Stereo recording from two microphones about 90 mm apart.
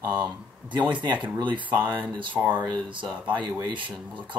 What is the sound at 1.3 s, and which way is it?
Speech, 65° right (ahead or behind).